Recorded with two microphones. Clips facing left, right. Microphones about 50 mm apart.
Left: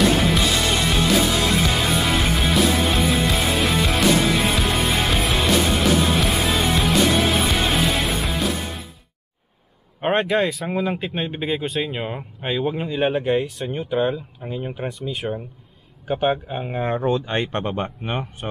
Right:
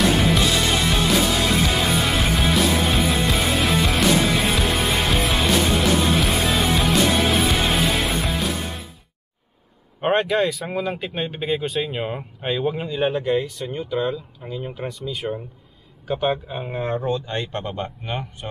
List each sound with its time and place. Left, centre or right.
0.2 s music: centre
9.9 s speech: centre
12.9 s speech: centre
15.2 s speech: centre
16.9 s speech: left